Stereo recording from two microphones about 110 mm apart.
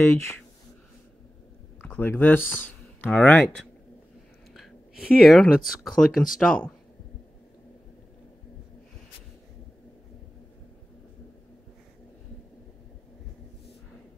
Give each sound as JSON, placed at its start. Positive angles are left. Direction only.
{"t": 0.0, "sound": "speech", "side_deg": 20}
{"t": 1.8, "sound": "speech", "side_deg": 15}
{"t": 5.2, "sound": "speech", "side_deg": 0}